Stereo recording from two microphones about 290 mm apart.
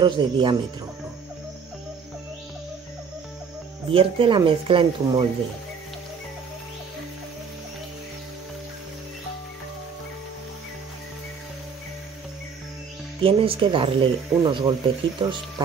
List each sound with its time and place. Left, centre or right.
0.0 s speech: centre
3.9 s speech: centre
13.2 s speech: centre